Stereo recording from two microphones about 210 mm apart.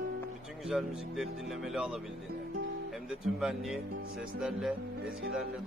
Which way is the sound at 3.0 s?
Centre (ahead or behind).